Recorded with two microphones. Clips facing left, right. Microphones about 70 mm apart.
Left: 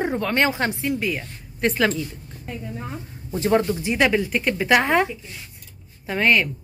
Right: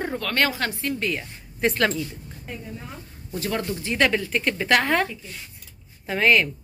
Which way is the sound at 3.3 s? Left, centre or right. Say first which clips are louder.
Left 8 dB; left.